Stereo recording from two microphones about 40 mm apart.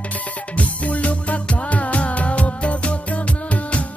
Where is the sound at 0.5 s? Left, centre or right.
Left.